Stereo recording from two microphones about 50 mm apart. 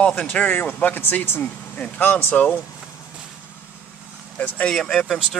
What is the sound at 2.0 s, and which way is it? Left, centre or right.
Speech, left.